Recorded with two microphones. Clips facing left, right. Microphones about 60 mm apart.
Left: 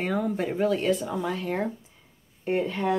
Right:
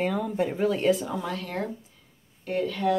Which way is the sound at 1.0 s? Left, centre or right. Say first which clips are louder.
Left 2 dB; centre.